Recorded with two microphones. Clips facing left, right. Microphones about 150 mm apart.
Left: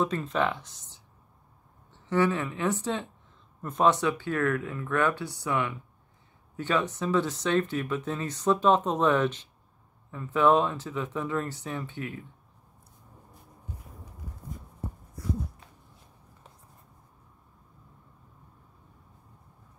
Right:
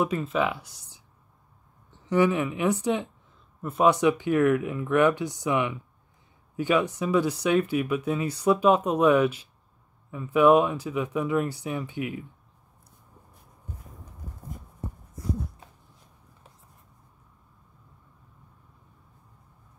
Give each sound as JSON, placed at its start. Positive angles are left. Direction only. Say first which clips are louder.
{"t": 0.0, "sound": "speech", "louder": "right 2 dB", "side_deg": -10}